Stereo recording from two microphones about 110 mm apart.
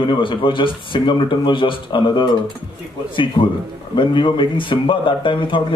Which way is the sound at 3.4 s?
50° left (ahead or behind).